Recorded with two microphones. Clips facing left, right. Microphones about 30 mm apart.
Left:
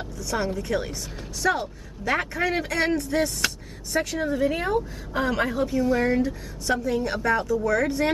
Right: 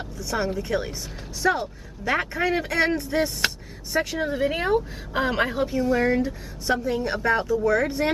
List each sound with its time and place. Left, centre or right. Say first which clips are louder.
0.2 s a man's voice: right 1 dB; centre
5.8 s speech: right 1 dB; centre